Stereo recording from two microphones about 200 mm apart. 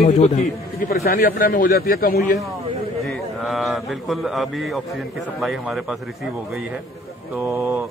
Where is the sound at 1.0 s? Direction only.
45° left (ahead or behind).